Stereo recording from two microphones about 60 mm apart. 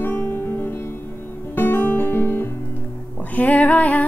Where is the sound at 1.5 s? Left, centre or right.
Left.